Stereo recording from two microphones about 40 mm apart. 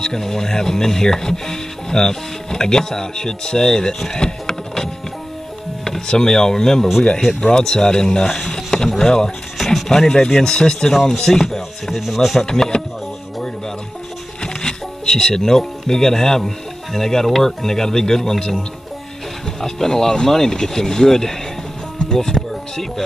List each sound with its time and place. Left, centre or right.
0.0 s speech: centre
5.9 s speech: centre
12.1 s speech: centre
12.4 s speech: centre
14.4 s speech: centre
19.6 s speech: centre
21.9 s music: centre